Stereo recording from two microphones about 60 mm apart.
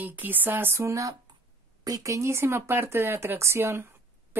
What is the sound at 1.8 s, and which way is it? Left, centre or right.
Speech, right.